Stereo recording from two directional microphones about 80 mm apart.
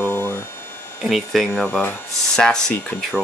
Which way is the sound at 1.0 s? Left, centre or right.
Centre.